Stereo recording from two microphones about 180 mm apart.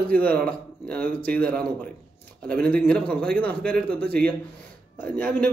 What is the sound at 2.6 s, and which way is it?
A man's voice, 5° left (ahead or behind).